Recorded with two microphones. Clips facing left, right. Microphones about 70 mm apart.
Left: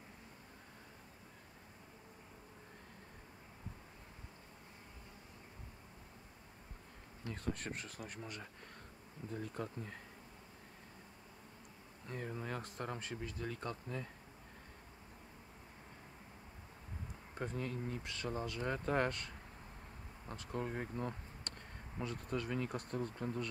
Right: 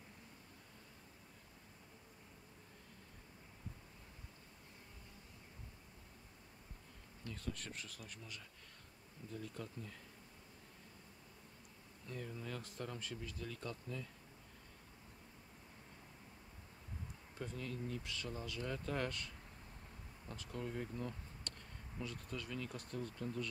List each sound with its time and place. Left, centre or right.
7.2 s speech: left
12.1 s speech: left
17.4 s speech: left